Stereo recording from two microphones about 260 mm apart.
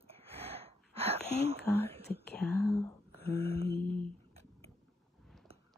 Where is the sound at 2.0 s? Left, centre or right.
Left.